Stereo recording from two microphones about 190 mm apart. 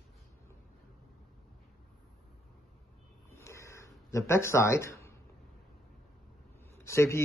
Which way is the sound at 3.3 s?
15° left (ahead or behind).